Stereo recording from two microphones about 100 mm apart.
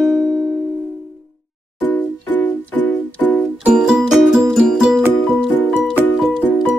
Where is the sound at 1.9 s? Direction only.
20° left (ahead or behind).